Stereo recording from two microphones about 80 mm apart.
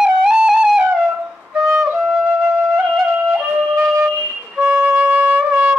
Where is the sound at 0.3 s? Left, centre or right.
Centre.